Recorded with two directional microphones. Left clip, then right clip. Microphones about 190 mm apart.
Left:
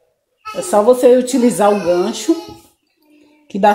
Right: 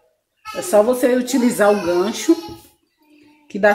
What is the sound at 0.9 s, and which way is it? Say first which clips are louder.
Speech: left 7 dB; 20° left (ahead or behind).